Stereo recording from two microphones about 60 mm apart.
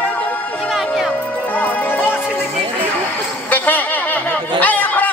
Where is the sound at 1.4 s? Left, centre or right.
Left.